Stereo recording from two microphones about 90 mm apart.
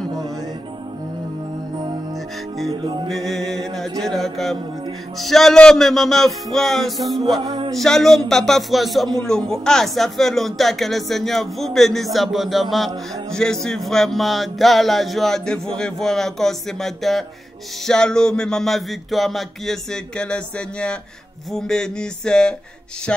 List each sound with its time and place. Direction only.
2.7 s music: 65° right (ahead or behind)
3.1 s music: centre (ahead or behind)
4.0 s a man's voice: 5° left (ahead or behind)
7.4 s a sound: 70° right (ahead or behind)
7.7 s a man's voice: 5° left (ahead or behind)
17.8 s music: 10° left (ahead or behind)
23.1 s speech: 10° left (ahead or behind)